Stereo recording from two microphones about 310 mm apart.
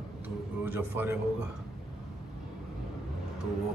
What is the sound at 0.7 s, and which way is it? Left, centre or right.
Speech, centre.